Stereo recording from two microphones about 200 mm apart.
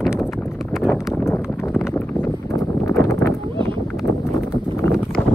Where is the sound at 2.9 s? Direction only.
10° left (ahead or behind).